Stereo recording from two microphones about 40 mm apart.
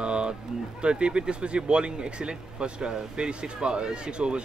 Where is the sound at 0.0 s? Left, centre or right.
Right.